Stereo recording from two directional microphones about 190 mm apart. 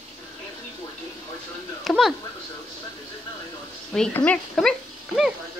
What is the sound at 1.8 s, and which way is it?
Speech, centre (ahead or behind).